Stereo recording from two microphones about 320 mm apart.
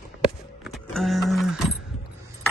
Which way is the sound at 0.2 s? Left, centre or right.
Centre.